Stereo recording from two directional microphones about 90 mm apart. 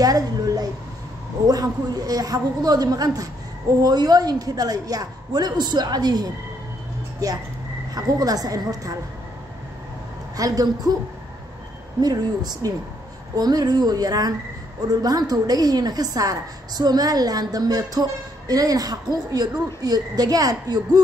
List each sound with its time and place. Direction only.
0.0 s a sound: 45° right (ahead or behind)
1.5 s a woman's voice: 45° right (ahead or behind)
7.9 s a woman's voice: 45° right (ahead or behind)
10.3 s a woman's voice: 40° right (ahead or behind)
12.0 s a woman's voice: 50° right (ahead or behind)